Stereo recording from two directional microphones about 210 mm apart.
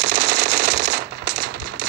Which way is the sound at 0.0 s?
55° right (ahead or behind).